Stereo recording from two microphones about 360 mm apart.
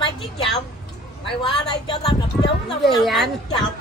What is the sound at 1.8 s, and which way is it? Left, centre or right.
Speech, centre.